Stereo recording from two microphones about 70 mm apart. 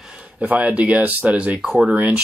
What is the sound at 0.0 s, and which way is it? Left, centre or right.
Speech, centre.